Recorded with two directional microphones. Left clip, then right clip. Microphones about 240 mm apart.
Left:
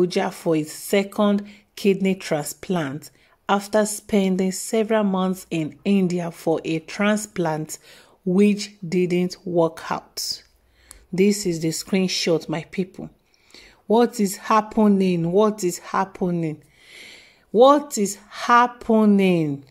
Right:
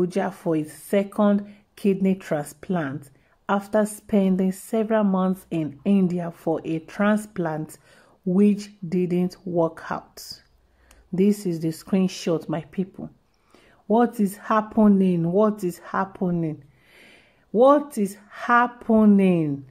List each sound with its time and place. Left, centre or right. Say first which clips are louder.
0.0 s a woman's voice: left 3 dB; centre